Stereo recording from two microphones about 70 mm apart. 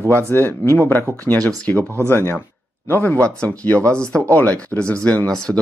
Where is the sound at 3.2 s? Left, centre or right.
Centre.